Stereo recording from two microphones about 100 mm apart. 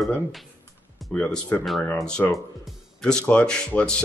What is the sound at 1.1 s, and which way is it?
Speech, 15° left (ahead or behind).